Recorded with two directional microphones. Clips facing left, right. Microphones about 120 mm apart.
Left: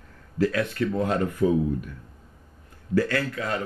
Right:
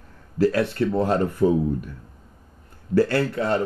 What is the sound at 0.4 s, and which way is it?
Speech, 35° right (ahead or behind).